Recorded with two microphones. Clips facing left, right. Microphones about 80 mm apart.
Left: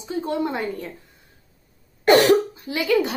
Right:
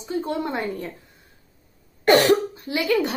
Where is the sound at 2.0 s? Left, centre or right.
Centre.